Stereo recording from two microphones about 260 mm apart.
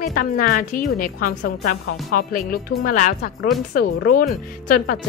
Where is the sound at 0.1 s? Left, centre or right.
Left.